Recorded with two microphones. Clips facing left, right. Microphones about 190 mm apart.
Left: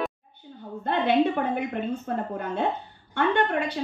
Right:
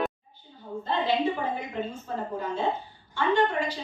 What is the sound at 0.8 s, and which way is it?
A woman's voice, 60° left (ahead or behind).